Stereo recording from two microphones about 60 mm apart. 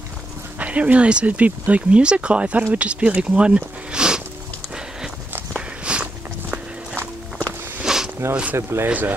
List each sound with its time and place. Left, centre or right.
0.6 s speech: right
5.9 s walk: centre
7.0 s walk: left
7.8 s a sound: centre
8.5 s speech: right
8.8 s speech: right